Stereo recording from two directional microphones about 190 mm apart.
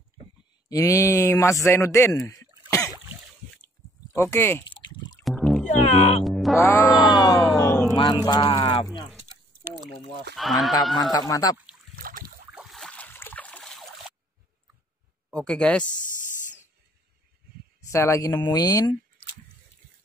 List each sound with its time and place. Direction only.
0.7 s a man's voice: 15° left (ahead or behind)
2.7 s a sound: 15° left (ahead or behind)
4.1 s speech: 15° left (ahead or behind)
5.2 s music: centre (ahead or behind)
5.7 s speech: 35° left (ahead or behind)
6.2 s music: centre (ahead or behind)
6.6 s speech: 15° left (ahead or behind)
10.3 s speech: centre (ahead or behind)
11.0 s speech: 20° left (ahead or behind)
11.9 s boat: 50° right (ahead or behind)
12.5 s boat: centre (ahead or behind)
15.3 s speech: 5° left (ahead or behind)
17.9 s speech: 15° left (ahead or behind)